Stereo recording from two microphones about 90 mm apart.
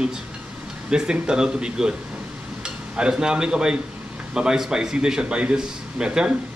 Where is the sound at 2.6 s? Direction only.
10° right (ahead or behind).